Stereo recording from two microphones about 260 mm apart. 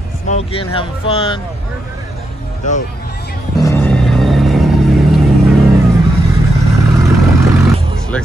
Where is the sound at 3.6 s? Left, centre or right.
Centre.